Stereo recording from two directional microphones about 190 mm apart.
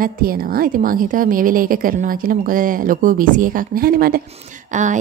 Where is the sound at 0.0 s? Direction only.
50° right (ahead or behind).